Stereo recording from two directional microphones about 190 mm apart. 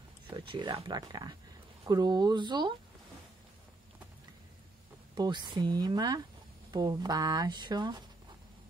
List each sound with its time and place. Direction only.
0.3 s speech: 25° right (ahead or behind)
5.1 s speech: 20° right (ahead or behind)